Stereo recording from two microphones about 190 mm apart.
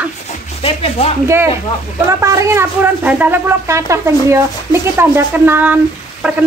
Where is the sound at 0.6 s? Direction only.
30° left (ahead or behind).